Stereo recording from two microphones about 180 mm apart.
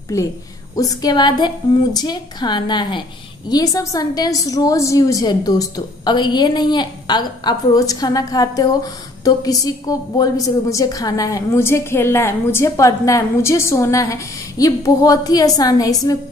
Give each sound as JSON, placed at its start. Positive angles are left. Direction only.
{"t": 0.1, "sound": "a woman's voice", "side_deg": 15}